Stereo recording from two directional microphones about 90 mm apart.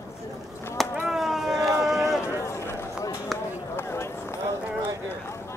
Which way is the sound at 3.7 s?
30° left (ahead or behind).